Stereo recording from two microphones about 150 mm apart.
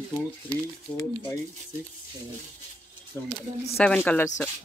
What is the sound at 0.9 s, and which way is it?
Speech, 15° left (ahead or behind).